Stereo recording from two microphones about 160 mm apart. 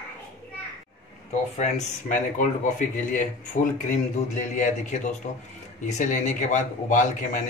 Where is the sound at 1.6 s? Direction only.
50° left (ahead or behind).